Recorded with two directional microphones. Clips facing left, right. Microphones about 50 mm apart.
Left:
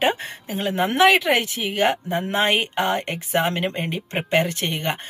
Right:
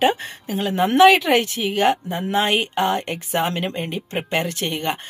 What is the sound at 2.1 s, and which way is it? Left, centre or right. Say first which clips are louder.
Speech: even; left.